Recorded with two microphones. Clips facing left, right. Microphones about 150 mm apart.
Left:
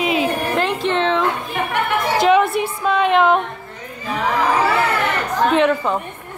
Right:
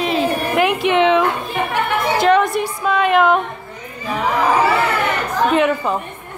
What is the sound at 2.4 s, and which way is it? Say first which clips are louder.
Speech: even; 40° right (ahead or behind).